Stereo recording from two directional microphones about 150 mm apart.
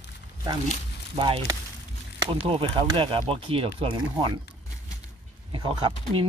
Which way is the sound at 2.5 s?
35° right (ahead or behind).